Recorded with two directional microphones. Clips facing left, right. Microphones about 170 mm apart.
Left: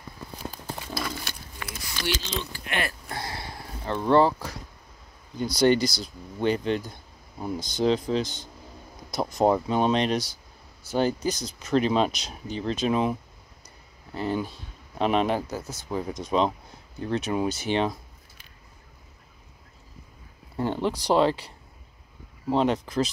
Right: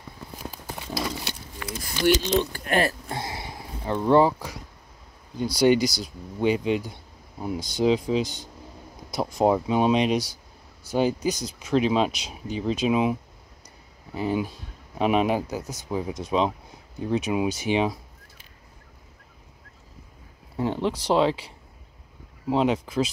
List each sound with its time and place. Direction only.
1.0 s pig: 20° right (ahead or behind)
2.2 s speech: 45° right (ahead or behind)
3.1 s speech: 20° right (ahead or behind)
20.5 s speech: centre (ahead or behind)